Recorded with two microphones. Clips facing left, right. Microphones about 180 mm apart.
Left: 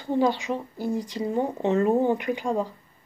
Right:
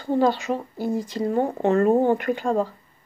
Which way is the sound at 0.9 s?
15° left (ahead or behind).